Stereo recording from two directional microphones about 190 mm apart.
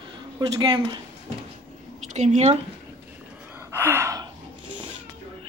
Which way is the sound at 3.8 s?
15° right (ahead or behind).